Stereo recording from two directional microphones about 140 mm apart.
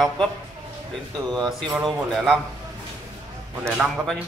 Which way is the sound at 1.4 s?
5° left (ahead or behind).